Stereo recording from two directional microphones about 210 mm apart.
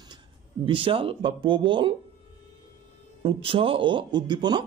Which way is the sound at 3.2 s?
25° right (ahead or behind).